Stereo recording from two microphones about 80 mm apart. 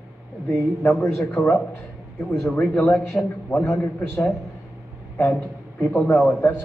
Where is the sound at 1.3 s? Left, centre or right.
Centre.